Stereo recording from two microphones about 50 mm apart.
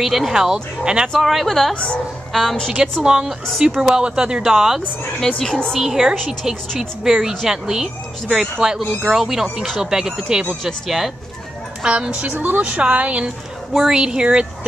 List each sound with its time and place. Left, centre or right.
0.0 s speech: centre
0.3 s speech: centre
1.0 s speech: centre
3.0 s speech: centre
5.2 s speech: centre
5.7 s speech: centre
11.8 s a woman's voice: right
13.7 s speech: centre